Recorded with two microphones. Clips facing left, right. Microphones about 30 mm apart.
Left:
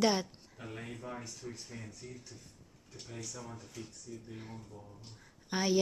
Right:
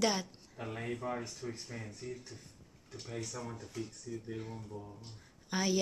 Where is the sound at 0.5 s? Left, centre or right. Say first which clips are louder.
Right 5 dB; right.